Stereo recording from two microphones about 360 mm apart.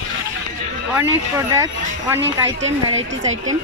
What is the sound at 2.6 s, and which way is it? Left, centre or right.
Speech, centre.